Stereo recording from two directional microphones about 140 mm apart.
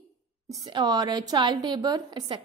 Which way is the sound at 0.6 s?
30° right (ahead or behind).